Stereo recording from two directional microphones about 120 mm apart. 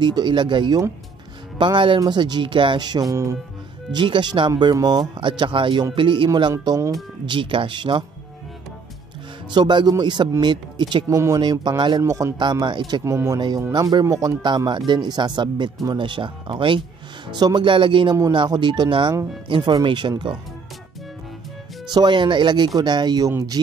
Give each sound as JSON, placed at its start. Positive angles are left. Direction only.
{"t": 0.0, "sound": "speech", "side_deg": -40}
{"t": 3.9, "sound": "speech", "side_deg": -40}
{"t": 5.4, "sound": "speech", "side_deg": -45}
{"t": 7.2, "sound": "speech", "side_deg": -45}
{"t": 9.5, "sound": "speech", "side_deg": -40}
{"t": 11.1, "sound": "speech", "side_deg": -25}
{"t": 12.0, "sound": "speech", "side_deg": -25}
{"t": 12.6, "sound": "speech", "side_deg": -40}
{"t": 13.0, "sound": "speech", "side_deg": -25}
{"t": 14.4, "sound": "speech", "side_deg": -40}
{"t": 21.9, "sound": "speech", "side_deg": -40}